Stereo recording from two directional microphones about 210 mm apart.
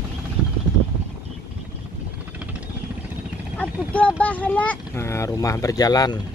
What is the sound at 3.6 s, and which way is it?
Speech, 5° left (ahead or behind).